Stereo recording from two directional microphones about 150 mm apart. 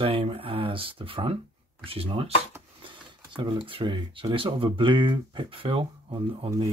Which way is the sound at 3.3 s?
35° right (ahead or behind).